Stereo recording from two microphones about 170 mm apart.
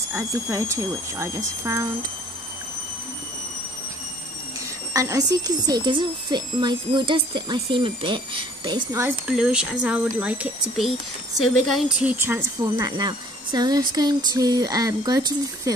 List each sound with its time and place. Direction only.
0.1 s speech: 15° right (ahead or behind)
4.9 s a woman's voice: 20° right (ahead or behind)
9.3 s a woman's voice: 5° right (ahead or behind)
12.7 s a woman's voice: 25° right (ahead or behind)